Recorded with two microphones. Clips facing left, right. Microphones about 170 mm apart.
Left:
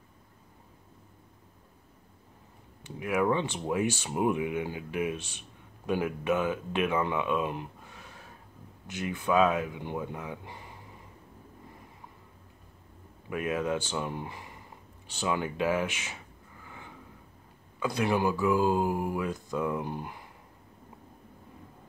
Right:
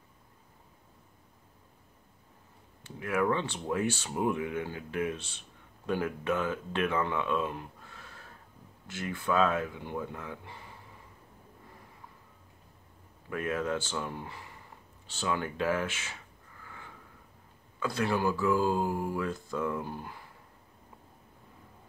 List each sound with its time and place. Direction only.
2.8 s speech: 15° left (ahead or behind)
13.3 s speech: 15° left (ahead or behind)
16.6 s snort: 15° left (ahead or behind)
17.7 s speech: 15° left (ahead or behind)